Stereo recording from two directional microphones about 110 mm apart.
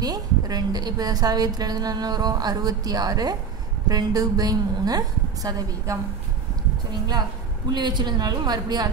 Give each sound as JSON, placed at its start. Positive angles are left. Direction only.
{"t": 0.0, "sound": "a woman's voice", "side_deg": -35}